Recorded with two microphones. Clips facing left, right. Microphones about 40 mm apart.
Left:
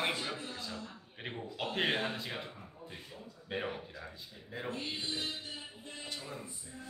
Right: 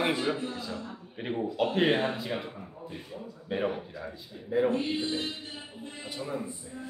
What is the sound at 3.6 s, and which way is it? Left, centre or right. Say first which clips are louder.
A man's voice: right 8 dB; centre.